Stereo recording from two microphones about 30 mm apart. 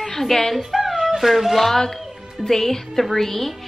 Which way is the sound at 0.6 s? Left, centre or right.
Centre.